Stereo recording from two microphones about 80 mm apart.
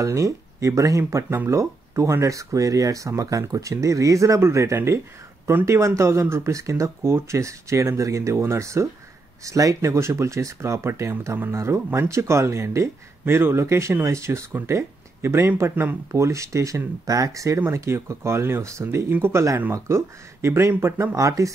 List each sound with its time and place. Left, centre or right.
0.0 s speech: right
16.1 s speech: right